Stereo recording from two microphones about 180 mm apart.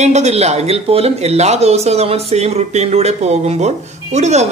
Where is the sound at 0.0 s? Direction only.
40° right (ahead or behind).